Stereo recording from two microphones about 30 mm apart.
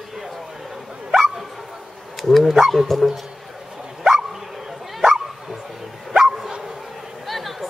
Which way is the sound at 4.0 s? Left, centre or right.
Centre.